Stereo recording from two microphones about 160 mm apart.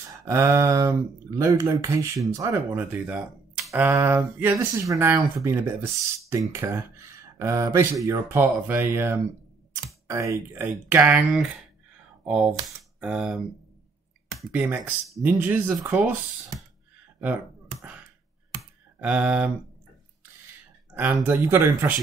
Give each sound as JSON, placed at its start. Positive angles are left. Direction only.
{"t": 0.3, "sound": "speech", "side_deg": -20}
{"t": 12.3, "sound": "speech", "side_deg": -5}
{"t": 14.5, "sound": "speech", "side_deg": -10}
{"t": 17.2, "sound": "a sound", "side_deg": -10}
{"t": 20.9, "sound": "speech", "side_deg": -15}